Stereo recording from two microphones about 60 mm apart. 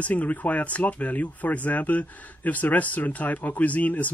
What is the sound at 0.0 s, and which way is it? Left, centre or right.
Speech, left.